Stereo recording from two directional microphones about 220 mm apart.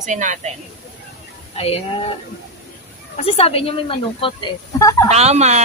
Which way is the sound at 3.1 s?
25° left (ahead or behind).